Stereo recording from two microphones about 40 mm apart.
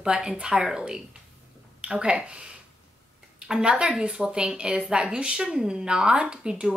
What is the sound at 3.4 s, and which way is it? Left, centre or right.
Speech, right.